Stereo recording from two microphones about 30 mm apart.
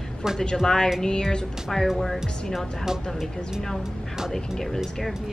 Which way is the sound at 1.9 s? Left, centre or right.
Centre.